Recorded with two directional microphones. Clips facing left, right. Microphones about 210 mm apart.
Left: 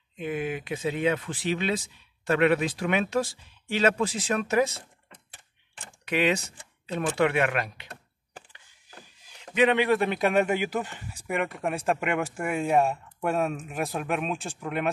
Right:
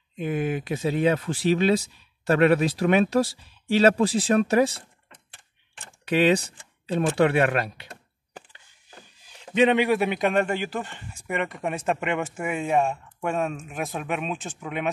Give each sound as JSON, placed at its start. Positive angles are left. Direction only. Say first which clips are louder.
{"t": 0.2, "sound": "speech", "louder": "right 4 dB", "side_deg": -45}
{"t": 6.0, "sound": "speech", "louder": "right 5 dB", "side_deg": -30}
{"t": 9.4, "sound": "a sound", "louder": "right 3 dB", "side_deg": -30}
{"t": 9.8, "sound": "speech", "louder": "right 1 dB", "side_deg": -10}